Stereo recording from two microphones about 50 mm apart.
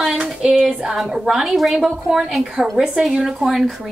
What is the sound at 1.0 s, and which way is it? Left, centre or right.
Speech, centre.